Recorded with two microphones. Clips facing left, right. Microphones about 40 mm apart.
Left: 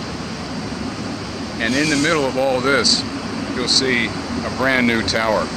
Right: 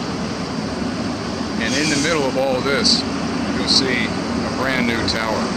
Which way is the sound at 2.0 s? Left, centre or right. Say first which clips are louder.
Left 1 dB; centre.